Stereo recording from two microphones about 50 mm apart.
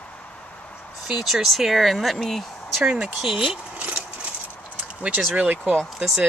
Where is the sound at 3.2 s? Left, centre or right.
Centre.